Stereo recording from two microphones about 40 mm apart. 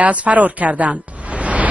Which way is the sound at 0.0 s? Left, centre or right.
Right.